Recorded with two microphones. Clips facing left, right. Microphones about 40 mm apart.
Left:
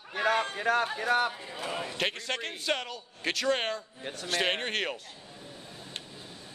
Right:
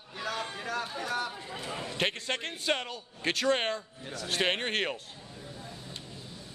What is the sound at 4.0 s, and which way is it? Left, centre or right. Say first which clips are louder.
Speech: left 1 dB; left.